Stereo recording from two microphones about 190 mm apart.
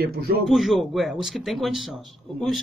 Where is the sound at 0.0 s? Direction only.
55° right (ahead or behind).